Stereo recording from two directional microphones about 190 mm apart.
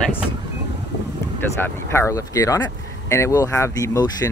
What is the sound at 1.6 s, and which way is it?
Speech, 15° left (ahead or behind).